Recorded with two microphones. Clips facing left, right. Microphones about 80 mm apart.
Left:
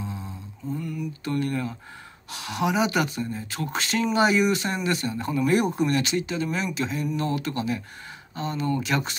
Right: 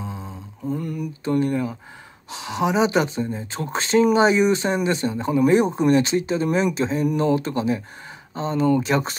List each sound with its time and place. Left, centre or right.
0.7 s mantra: right
1.2 s speech: right